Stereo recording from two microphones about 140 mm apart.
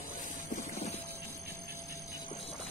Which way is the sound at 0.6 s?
55° left (ahead or behind).